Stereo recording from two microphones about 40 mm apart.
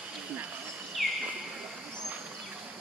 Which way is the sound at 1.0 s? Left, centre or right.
Centre.